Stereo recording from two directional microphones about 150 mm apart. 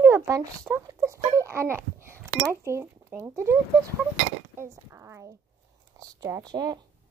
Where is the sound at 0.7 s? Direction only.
5° right (ahead or behind).